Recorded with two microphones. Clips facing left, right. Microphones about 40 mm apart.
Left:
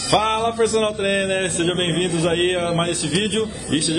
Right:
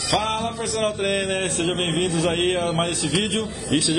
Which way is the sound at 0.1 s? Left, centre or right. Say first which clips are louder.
Left 5 dB; left.